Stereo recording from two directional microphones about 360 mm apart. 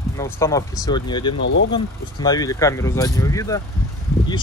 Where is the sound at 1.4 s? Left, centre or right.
Left.